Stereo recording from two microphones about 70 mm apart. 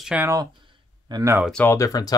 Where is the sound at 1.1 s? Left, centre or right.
Right.